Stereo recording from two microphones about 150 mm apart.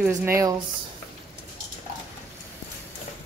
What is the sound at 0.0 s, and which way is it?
Speech, 15° right (ahead or behind).